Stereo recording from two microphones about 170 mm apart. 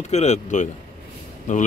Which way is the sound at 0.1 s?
40° left (ahead or behind).